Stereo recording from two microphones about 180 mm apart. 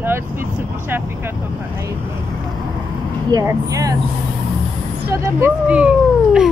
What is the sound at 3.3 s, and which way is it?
Speech, 20° right (ahead or behind).